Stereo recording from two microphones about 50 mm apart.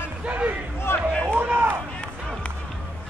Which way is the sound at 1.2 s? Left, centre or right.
Right.